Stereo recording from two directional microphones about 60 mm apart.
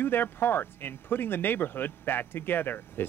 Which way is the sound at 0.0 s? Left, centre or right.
Left.